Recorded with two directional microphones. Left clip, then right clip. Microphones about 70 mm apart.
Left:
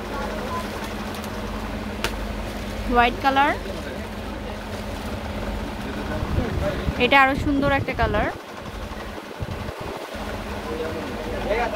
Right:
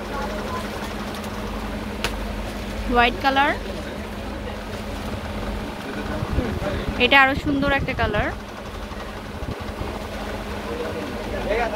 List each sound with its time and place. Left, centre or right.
2.9 s speech: centre
7.0 s speech: left